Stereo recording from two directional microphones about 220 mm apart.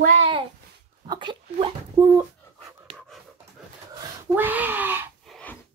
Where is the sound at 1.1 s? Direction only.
20° right (ahead or behind).